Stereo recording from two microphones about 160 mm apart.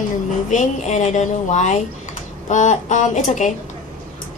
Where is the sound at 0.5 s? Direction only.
50° left (ahead or behind).